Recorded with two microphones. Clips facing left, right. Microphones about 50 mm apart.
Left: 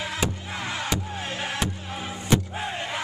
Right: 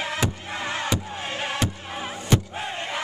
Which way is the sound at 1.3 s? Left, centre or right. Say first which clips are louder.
Right 2 dB; right.